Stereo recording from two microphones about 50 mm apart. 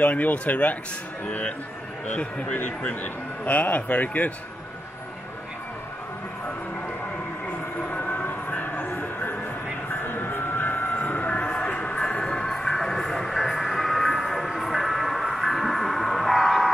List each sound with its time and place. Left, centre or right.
0.0 s a man's voice: left
7.8 s train: left
11.0 s vehicle: left
12.0 s music: centre